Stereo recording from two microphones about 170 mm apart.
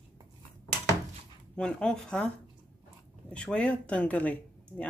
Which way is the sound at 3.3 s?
5° left (ahead or behind).